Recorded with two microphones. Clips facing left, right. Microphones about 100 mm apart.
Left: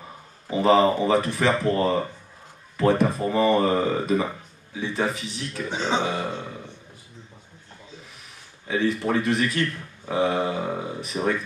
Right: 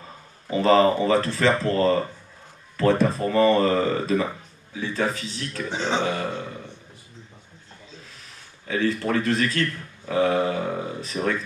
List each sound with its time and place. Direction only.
0.0 s speech: 15° left (ahead or behind)
8.6 s speech: 15° left (ahead or behind)